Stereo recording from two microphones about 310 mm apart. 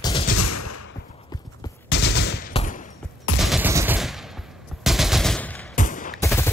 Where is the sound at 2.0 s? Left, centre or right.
Left.